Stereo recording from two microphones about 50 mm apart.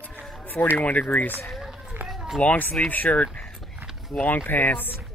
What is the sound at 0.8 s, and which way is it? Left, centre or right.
Speech, left.